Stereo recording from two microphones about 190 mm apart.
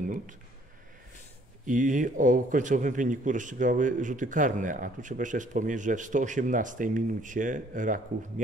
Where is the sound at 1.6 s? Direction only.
40° right (ahead or behind).